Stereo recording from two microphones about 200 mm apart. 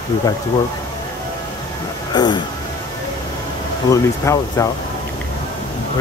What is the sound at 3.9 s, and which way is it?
Speech, 15° left (ahead or behind).